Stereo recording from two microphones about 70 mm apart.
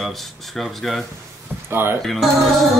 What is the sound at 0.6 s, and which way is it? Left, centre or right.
Speech, centre.